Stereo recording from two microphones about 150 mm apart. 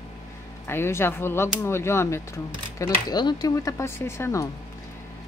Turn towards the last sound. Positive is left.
turn(degrees=20)  # may be behind; listen again after turning